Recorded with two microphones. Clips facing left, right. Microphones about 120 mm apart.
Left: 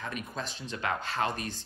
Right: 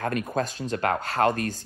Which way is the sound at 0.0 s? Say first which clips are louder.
Right 10 dB; 50° right (ahead or behind).